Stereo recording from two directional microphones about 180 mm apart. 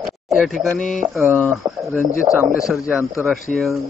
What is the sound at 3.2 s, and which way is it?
Speech, centre (ahead or behind).